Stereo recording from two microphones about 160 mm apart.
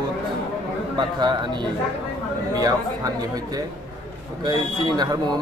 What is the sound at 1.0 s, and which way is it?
Speech, 30° right (ahead or behind).